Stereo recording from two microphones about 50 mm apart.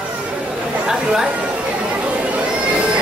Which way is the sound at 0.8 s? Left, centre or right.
Centre.